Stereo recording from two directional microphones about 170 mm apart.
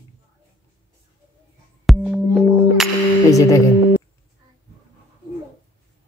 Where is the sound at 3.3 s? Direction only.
20° left (ahead or behind).